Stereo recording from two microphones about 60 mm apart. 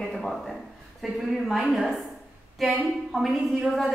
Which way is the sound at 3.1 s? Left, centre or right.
Centre.